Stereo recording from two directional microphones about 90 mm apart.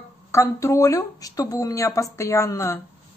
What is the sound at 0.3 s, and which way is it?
Speech, 35° left (ahead or behind).